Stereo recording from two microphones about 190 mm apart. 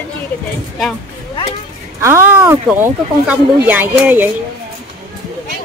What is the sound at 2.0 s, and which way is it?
Speech, 15° right (ahead or behind).